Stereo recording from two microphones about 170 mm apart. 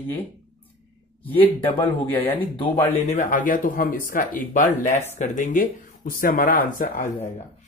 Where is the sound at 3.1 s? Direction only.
50° left (ahead or behind).